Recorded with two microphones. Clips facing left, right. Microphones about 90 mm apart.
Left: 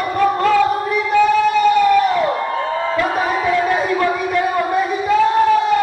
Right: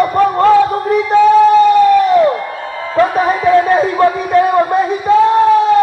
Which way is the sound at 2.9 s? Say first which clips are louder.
Right 10 dB; 35° right (ahead or behind).